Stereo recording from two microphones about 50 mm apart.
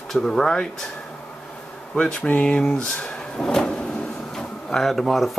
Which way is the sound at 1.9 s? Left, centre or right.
Centre.